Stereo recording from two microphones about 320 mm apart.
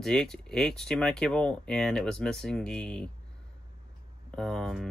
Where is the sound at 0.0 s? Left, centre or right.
Centre.